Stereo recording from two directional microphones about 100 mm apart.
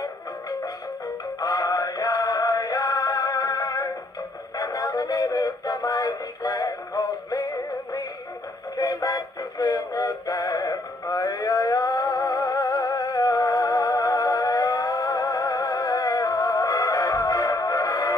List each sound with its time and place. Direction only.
1.4 s music: 35° left (ahead or behind)
4.6 s synthetic singing: 40° left (ahead or behind)
8.7 s synthetic singing: 40° left (ahead or behind)